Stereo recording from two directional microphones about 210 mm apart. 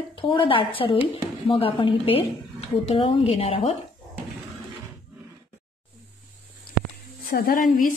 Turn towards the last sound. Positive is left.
turn(degrees=40)  # may be behind; listen again after turning